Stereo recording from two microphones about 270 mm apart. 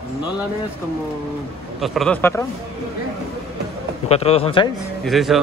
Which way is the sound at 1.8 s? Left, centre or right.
Centre.